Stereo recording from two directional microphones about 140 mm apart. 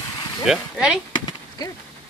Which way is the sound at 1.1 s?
30° left (ahead or behind).